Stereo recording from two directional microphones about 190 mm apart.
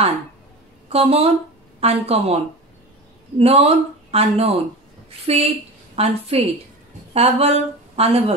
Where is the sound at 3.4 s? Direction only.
30° right (ahead or behind).